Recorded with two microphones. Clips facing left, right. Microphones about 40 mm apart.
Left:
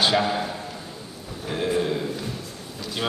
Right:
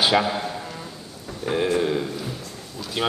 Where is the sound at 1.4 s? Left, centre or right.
Centre.